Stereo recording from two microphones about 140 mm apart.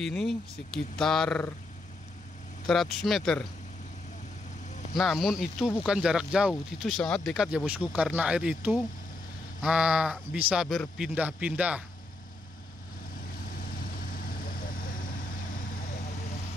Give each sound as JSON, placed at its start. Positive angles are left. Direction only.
{"t": 0.0, "sound": "speech", "side_deg": 5}
{"t": 2.6, "sound": "speech", "side_deg": 0}
{"t": 4.9, "sound": "speech", "side_deg": 0}
{"t": 14.1, "sound": "vehicle", "side_deg": 90}